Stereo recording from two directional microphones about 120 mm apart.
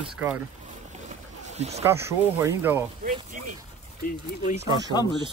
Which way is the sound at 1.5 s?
65° right (ahead or behind).